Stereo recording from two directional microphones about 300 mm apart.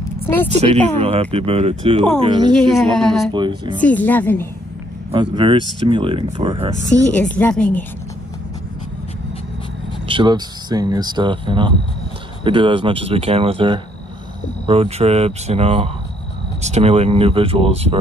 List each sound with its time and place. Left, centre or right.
0.6 s speech: centre
2.5 s speech: centre
3.3 s speech: centre
3.8 s speech: centre
5.1 s speech: centre
7.2 s speech: centre
10.0 s speech: centre